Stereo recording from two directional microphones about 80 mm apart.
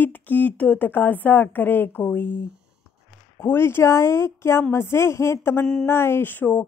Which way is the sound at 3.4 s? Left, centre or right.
Left.